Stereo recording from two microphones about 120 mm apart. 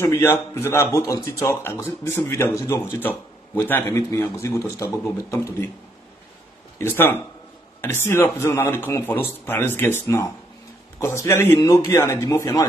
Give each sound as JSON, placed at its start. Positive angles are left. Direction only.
{"t": 0.0, "sound": "speech", "side_deg": 20}
{"t": 6.8, "sound": "speech", "side_deg": 20}
{"t": 11.5, "sound": "speech", "side_deg": 30}